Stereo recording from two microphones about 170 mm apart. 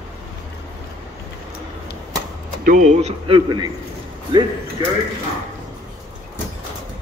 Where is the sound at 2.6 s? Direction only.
50° right (ahead or behind); by 3.6 s 25° right (ahead or behind).